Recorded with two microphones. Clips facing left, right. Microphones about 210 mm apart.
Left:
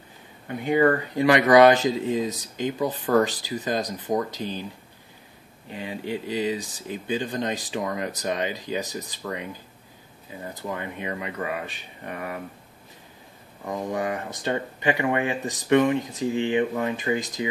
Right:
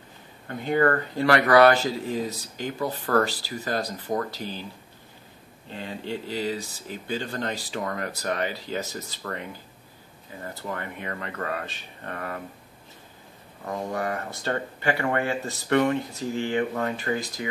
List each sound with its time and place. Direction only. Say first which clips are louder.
0.5 s speech: left 2 dB; 15° left (ahead or behind)
5.7 s speech: left 2 dB; 10° left (ahead or behind)
13.7 s speech: left 2 dB; 15° left (ahead or behind)